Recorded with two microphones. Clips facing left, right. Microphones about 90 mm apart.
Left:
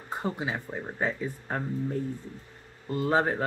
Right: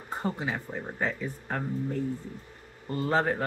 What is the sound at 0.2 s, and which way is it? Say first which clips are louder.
Speech: even; 15° left (ahead or behind).